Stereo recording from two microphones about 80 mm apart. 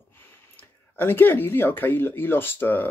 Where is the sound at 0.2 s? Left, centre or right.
Left.